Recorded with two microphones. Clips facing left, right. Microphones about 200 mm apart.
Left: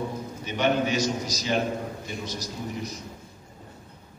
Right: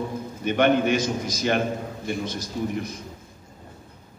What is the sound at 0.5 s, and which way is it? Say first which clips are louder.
A man's voice: right 5 dB; 55° right (ahead or behind).